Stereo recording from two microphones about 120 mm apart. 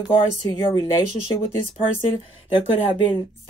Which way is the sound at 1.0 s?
80° right.